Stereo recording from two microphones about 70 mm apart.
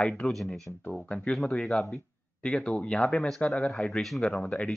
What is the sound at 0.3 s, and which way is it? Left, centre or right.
Speech, centre.